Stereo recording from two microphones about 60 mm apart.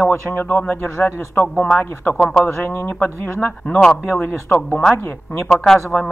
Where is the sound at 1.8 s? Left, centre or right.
Left.